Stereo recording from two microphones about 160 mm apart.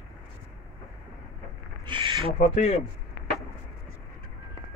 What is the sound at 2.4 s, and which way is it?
Speech, 45° left (ahead or behind).